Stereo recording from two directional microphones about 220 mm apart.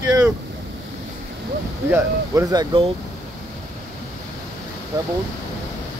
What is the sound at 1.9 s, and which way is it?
Speech, 15° right (ahead or behind).